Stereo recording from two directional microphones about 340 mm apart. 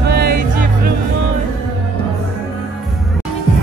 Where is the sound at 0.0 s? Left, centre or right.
Right.